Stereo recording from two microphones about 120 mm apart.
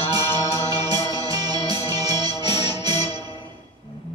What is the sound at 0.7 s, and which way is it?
Music, 35° right (ahead or behind).